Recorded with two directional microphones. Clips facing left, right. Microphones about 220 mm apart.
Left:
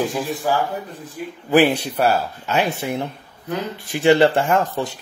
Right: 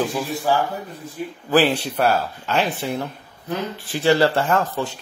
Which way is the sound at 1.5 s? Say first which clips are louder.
Left 2 dB; 10° left (ahead or behind).